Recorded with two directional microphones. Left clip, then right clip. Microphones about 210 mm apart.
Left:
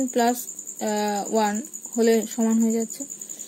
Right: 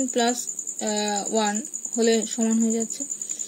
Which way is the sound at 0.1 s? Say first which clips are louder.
Left 3 dB; centre (ahead or behind).